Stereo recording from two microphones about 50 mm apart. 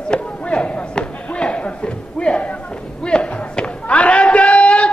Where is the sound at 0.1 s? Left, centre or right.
Left.